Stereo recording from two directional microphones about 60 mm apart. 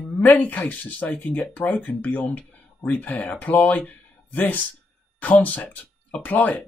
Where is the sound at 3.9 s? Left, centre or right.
Left.